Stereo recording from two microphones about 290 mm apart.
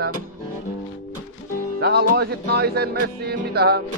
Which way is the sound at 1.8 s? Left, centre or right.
Right.